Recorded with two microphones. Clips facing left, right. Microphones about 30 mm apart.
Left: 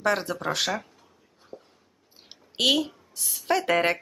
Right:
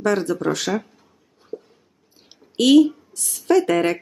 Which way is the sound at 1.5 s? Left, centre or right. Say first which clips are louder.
Right 11 dB; left.